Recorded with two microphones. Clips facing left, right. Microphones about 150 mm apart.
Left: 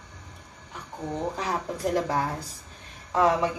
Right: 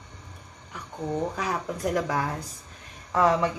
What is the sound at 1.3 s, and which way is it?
A woman's voice, 30° left (ahead or behind).